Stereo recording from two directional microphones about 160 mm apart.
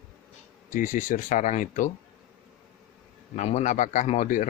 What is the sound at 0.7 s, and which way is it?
A man's voice, 55° left (ahead or behind).